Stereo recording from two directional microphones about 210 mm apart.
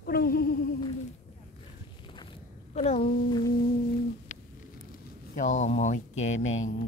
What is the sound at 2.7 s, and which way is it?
Speech, 30° left (ahead or behind).